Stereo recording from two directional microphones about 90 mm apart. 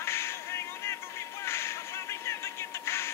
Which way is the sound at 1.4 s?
30° left (ahead or behind).